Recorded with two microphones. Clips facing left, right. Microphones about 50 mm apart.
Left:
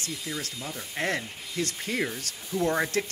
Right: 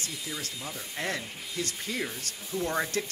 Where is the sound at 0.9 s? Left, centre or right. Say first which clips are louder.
Left 4 dB; left.